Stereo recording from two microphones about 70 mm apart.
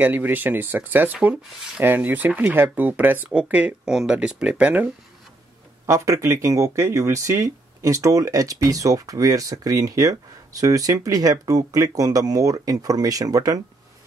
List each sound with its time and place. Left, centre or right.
0.0 s speech: right
3.8 s speech: centre
5.9 s speech: right